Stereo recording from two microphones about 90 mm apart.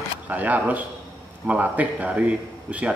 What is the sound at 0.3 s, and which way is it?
Speech, 20° right (ahead or behind).